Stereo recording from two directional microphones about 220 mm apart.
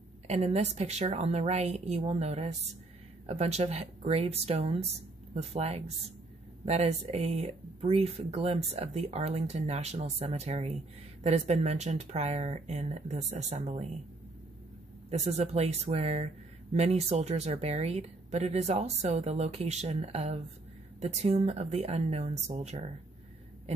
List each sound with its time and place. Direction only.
0.3 s speech: 30° right (ahead or behind)
15.0 s speech: 30° right (ahead or behind)